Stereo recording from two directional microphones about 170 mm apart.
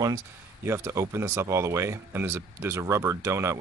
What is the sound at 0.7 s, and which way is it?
Speech, 15° right (ahead or behind).